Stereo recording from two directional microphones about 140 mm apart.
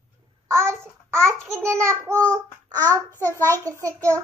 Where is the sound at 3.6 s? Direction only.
25° right (ahead or behind).